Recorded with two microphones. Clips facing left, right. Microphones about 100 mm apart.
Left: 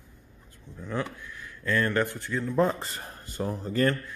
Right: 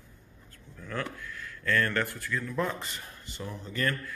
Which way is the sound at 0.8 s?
20° left (ahead or behind).